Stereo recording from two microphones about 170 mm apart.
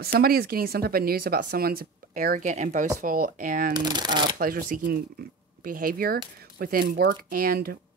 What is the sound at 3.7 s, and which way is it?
Speech, 25° right (ahead or behind).